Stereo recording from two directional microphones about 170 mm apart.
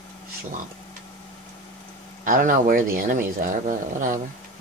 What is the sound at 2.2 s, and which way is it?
Speech, 50° right (ahead or behind).